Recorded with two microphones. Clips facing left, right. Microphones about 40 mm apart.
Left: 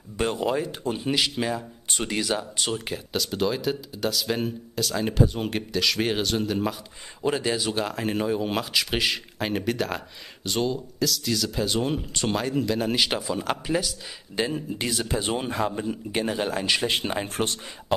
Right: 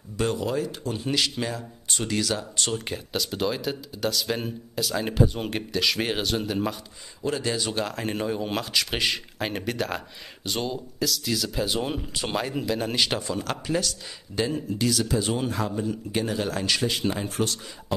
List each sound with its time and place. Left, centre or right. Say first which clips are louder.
0.2 s speech: left 1 dB; left
1.9 s speech: even; centre
2.8 s speech: left 1 dB; centre
14.8 s a man's voice: right 4 dB; left
16.8 s a man's voice: even; left